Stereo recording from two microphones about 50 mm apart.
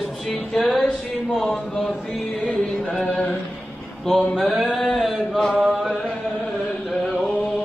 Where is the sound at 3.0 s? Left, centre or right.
Left.